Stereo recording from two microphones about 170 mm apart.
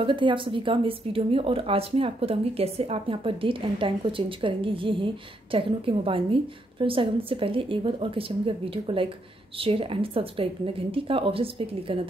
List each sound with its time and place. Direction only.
0.0 s speech: 30° right (ahead or behind)